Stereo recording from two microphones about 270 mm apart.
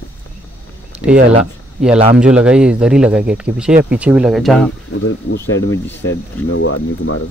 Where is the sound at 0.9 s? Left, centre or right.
Centre.